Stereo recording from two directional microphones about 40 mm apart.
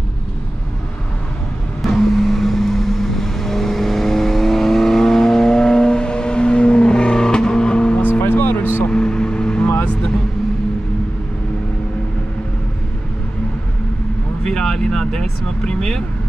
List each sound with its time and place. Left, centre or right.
1.8 s vehicle: centre; by 8.0 s left
8.0 s music: left
8.9 s vehicle: left
14.4 s vehicle: centre